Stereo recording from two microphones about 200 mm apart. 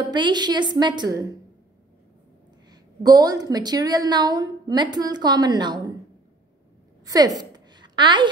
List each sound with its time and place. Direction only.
0.1 s a woman's voice: 20° right (ahead or behind)
2.7 s a woman's voice: 20° right (ahead or behind)
7.1 s a sound: 20° right (ahead or behind)